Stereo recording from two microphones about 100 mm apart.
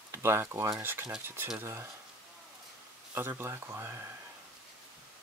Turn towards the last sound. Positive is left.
turn(degrees=-25)  # may be behind; listen again after turning